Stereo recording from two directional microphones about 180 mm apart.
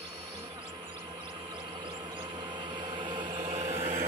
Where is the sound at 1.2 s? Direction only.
25° right (ahead or behind).